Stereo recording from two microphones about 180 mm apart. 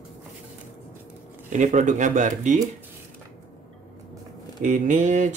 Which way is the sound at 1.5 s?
45° right (ahead or behind).